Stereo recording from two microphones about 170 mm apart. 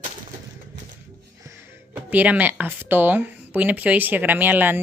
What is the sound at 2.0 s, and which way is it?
Speech, 10° right (ahead or behind).